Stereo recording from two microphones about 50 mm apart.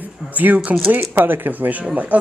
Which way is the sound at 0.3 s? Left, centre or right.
Right.